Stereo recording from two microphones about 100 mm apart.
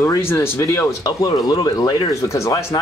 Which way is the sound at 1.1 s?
40° left (ahead or behind).